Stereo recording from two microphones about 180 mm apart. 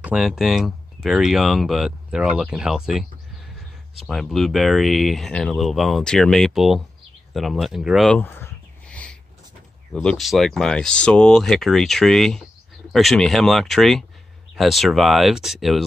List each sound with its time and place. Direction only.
0.0 s speech: 5° right (ahead or behind)